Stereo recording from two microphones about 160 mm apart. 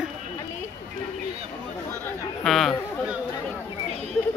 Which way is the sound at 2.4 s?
Centre (ahead or behind).